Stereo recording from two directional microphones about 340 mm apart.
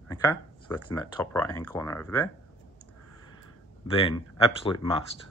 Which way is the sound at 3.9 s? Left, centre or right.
Centre.